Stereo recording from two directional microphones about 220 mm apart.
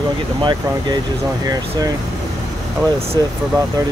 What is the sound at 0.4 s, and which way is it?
Speech, 20° right (ahead or behind).